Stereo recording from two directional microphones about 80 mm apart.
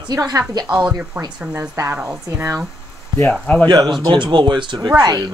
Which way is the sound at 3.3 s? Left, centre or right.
Centre.